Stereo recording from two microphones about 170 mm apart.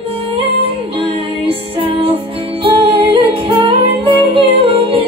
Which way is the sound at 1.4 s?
35° right (ahead or behind).